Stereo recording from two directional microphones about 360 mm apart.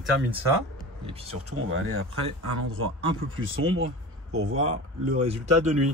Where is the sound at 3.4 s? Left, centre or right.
Right.